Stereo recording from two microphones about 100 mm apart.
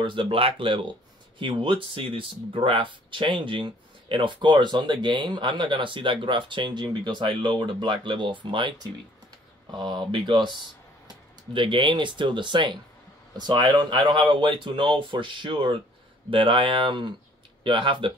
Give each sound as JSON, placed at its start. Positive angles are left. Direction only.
{"t": 0.0, "sound": "speech", "side_deg": -55}
{"t": 11.5, "sound": "speech", "side_deg": -55}